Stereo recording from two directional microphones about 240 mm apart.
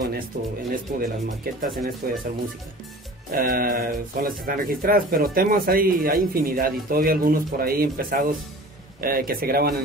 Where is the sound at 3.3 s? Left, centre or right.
Right.